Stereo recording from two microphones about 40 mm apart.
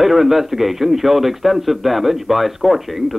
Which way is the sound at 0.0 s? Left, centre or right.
Centre.